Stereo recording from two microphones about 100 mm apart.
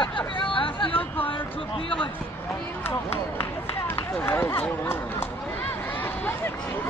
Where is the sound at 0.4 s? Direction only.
60° left (ahead or behind).